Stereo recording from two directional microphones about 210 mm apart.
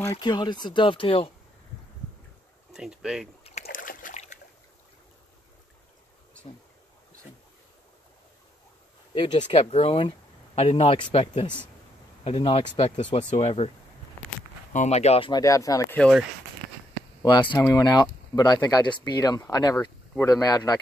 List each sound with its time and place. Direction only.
0.1 s speech: 20° left (ahead or behind)
2.7 s speech: 5° right (ahead or behind)
3.6 s boat: 40° left (ahead or behind)
9.1 s speech: 25° left (ahead or behind)
14.7 s speech: 35° left (ahead or behind); by 16.0 s 15° left (ahead or behind)
16.0 s speech: centre (ahead or behind)
17.2 s speech: 20° left (ahead or behind)